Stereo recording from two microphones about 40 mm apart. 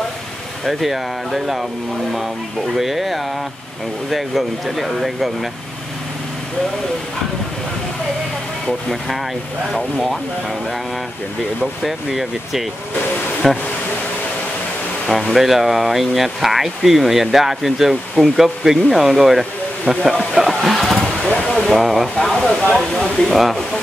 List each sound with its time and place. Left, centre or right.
0.7 s speech: centre
11.6 s speech: centre
13.4 s speech: centre
15.3 s speech: centre
20.3 s vehicle: centre
21.4 s a sound: left
21.6 s speech: centre
22.9 s a sound: centre
23.3 s speech: centre